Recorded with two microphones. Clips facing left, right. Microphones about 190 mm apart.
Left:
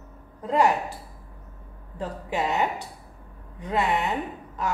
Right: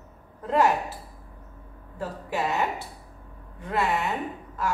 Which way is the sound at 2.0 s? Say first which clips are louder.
Left 1 dB; 20° left (ahead or behind).